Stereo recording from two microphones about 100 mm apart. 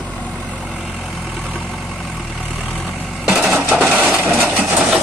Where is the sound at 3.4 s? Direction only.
20° right (ahead or behind).